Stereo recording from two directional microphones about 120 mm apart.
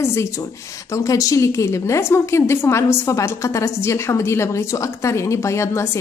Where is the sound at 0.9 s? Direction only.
25° left (ahead or behind).